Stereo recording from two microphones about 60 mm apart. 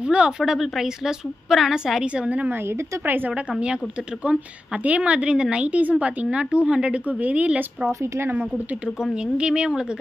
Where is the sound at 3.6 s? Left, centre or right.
Centre.